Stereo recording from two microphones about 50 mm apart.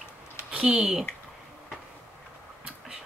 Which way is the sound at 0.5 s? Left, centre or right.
Right.